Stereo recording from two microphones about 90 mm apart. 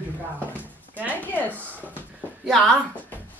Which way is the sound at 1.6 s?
20° right (ahead or behind).